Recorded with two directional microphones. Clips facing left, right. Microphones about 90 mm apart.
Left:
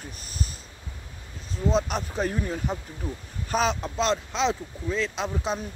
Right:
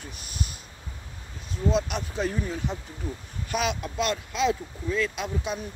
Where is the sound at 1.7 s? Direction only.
40° left (ahead or behind).